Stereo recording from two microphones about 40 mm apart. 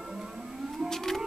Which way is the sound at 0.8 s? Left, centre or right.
Centre.